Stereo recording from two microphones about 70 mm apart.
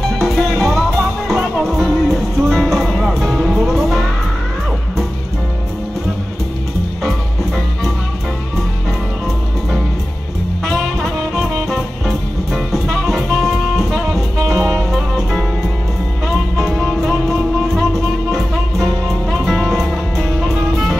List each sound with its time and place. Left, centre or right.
0.2 s music: centre
7.0 s music: centre
10.6 s music: centre
14.4 s music: right
14.9 s music: centre
16.5 s music: centre
19.3 s music: centre